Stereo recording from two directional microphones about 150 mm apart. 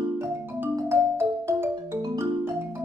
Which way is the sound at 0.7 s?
15° right (ahead or behind).